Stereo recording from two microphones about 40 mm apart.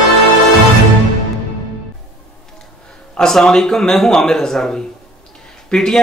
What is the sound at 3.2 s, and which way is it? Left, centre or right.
Speech, centre.